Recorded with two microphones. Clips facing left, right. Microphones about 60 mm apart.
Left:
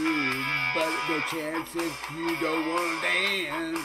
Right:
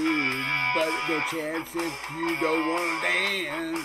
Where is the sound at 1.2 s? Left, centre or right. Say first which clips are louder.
Right 1 dB; centre.